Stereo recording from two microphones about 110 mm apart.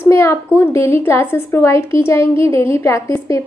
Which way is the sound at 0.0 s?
25° left (ahead or behind).